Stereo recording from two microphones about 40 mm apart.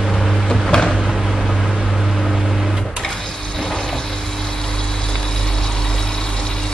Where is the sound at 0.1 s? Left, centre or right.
Centre.